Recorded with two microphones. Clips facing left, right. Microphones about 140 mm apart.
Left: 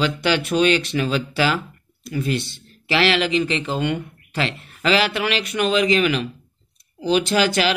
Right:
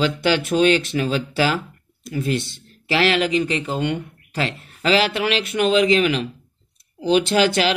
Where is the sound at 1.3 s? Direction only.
45° right (ahead or behind).